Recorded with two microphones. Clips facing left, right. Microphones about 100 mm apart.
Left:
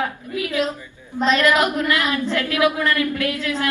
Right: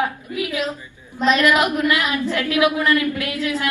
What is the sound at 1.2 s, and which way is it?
A woman's voice, 15° right (ahead or behind).